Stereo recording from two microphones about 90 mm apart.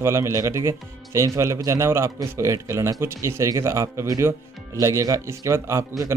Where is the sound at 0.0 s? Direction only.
35° right (ahead or behind).